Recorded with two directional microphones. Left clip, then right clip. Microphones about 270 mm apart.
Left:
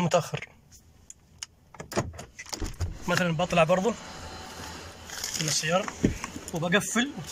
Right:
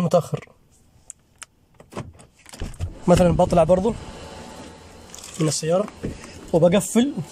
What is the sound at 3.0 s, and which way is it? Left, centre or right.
Speech, centre.